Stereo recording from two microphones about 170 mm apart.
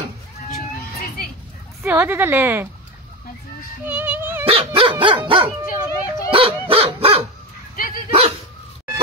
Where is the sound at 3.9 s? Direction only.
10° right (ahead or behind).